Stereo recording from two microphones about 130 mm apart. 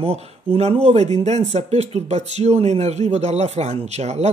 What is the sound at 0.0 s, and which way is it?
Speech, 55° right (ahead or behind).